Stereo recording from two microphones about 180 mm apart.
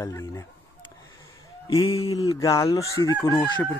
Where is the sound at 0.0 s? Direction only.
15° left (ahead or behind).